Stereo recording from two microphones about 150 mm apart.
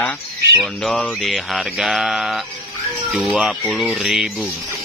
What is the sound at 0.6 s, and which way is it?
Speech, centre (ahead or behind).